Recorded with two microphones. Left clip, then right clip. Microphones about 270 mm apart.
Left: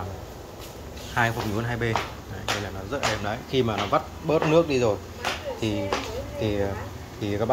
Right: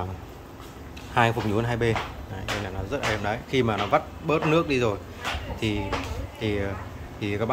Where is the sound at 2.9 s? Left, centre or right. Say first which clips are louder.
Even; centre.